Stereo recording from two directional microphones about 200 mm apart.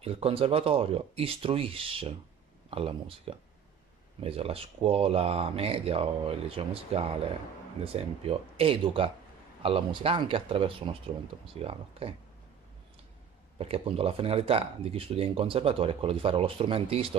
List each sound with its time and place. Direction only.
0.0 s speech: 30° right (ahead or behind)
13.6 s speech: 30° right (ahead or behind)